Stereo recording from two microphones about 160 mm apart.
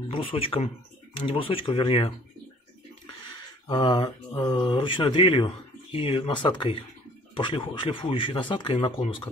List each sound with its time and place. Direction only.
0.3 s speech: 35° left (ahead or behind)
3.6 s speech: 30° left (ahead or behind)